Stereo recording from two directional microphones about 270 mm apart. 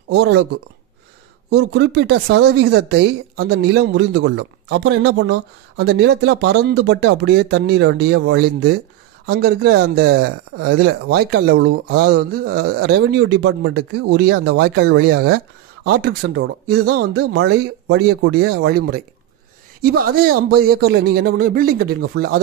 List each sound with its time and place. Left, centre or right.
0.1 s speech: right
1.5 s speech: right